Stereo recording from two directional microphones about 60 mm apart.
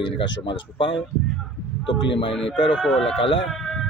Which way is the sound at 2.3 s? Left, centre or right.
Centre.